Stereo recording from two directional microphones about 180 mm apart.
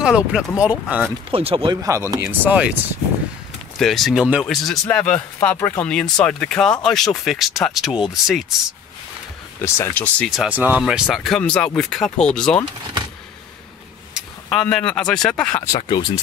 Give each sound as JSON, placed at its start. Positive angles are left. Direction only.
{"t": 0.0, "sound": "speech", "side_deg": -5}
{"t": 1.3, "sound": "speech", "side_deg": -30}
{"t": 2.2, "sound": "speech", "side_deg": -5}
{"t": 3.7, "sound": "speech", "side_deg": 0}
{"t": 9.6, "sound": "speech", "side_deg": 10}
{"t": 14.1, "sound": "speech", "side_deg": 5}
{"t": 15.7, "sound": "speech", "side_deg": 25}